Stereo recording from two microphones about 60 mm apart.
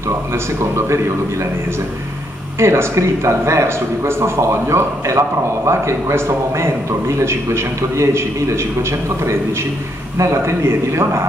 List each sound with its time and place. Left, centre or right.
0.3 s a man's voice: right
2.6 s a man's voice: right
10.1 s a man's voice: right